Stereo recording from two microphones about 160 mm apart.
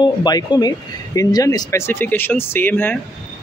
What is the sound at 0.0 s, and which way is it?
Speech, 25° left (ahead or behind).